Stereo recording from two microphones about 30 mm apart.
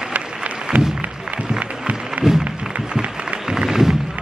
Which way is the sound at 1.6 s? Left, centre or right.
Right.